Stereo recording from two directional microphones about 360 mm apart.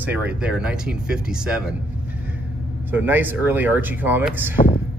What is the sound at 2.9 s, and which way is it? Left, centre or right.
Speech, centre.